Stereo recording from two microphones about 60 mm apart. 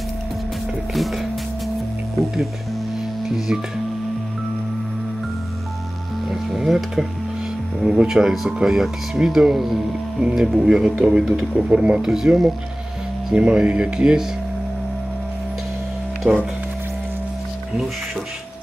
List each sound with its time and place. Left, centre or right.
0.9 s music: centre
3.3 s music: centre
6.3 s speech: centre
16.2 s speech: centre